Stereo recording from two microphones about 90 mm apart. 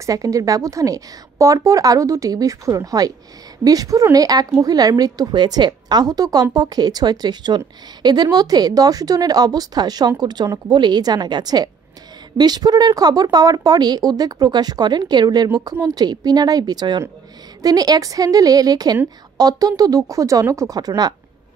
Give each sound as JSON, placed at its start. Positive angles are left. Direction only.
{"t": 0.0, "sound": "a woman's voice", "side_deg": -40}